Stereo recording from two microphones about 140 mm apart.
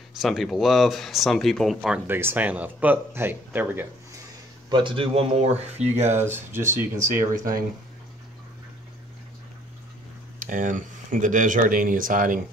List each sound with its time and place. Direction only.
0.2 s speech: centre (ahead or behind)
2.0 s speech: 15° right (ahead or behind)
4.6 s speech: 35° right (ahead or behind); by 6.2 s 55° right (ahead or behind)
6.2 s speech: 15° right (ahead or behind)
10.4 s speech: 70° right (ahead or behind)